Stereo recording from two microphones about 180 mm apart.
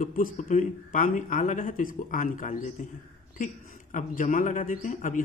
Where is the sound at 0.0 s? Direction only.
50° left (ahead or behind).